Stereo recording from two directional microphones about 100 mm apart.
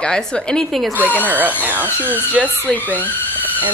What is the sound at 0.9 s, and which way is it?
Speech, 15° right (ahead or behind).